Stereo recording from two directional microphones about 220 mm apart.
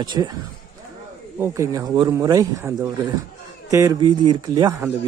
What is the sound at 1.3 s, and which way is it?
A man's voice, 10° right (ahead or behind).